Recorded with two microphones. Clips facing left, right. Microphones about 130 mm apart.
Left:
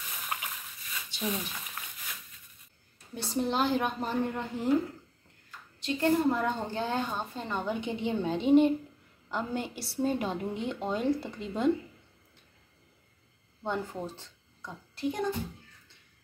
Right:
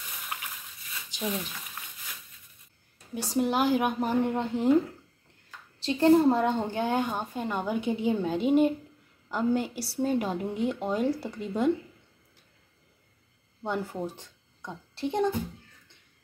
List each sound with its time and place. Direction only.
3.2 s speech: 10° right (ahead or behind)
5.8 s a woman's voice: 30° right (ahead or behind); by 11.7 s 5° right (ahead or behind)
13.6 s speech: 10° right (ahead or behind); by 15.3 s 25° right (ahead or behind)